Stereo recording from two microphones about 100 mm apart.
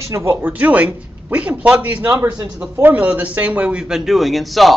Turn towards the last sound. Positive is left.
turn(degrees=0)  # may be behind; listen again after turning